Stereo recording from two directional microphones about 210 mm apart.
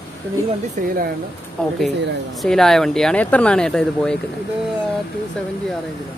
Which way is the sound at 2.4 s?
Centre (ahead or behind).